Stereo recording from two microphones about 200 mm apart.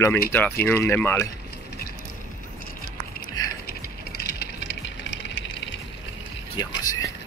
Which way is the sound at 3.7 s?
50° left (ahead or behind).